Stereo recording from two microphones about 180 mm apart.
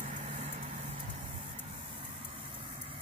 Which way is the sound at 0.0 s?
40° right (ahead or behind).